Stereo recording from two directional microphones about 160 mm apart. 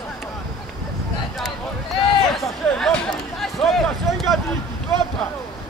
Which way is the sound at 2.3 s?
Centre (ahead or behind).